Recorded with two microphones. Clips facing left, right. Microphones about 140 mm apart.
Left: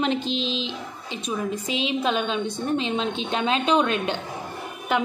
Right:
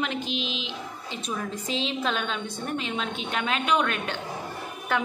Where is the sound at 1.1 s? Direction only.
15° left (ahead or behind).